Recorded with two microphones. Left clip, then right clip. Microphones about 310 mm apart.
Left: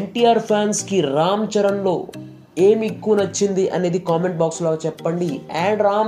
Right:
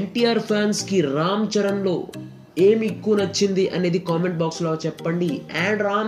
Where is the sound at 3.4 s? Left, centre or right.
Left.